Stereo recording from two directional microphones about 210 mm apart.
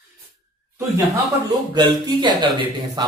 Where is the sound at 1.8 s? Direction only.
20° right (ahead or behind).